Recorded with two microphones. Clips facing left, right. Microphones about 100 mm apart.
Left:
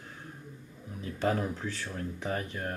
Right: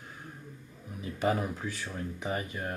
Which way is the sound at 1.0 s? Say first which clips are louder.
Even; 10° right (ahead or behind).